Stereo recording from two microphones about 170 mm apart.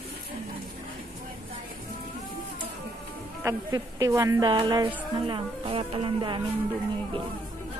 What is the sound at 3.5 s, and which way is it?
Speech, 15° right (ahead or behind).